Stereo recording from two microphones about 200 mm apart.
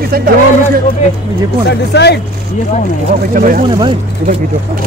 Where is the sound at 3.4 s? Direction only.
45° right (ahead or behind).